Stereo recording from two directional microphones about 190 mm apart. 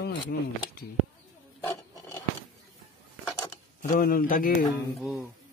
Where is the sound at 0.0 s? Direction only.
55° left (ahead or behind).